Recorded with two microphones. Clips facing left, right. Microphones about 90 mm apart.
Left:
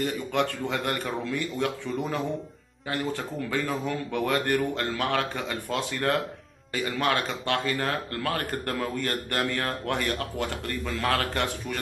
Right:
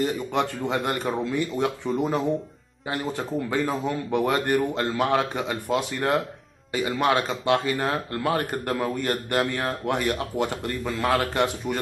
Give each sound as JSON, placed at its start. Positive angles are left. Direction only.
{"t": 0.0, "sound": "speech", "side_deg": -20}